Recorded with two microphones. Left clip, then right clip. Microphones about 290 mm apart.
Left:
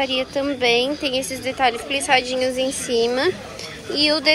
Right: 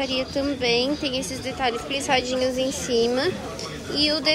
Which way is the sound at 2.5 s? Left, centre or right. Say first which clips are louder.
Left 3 dB; right.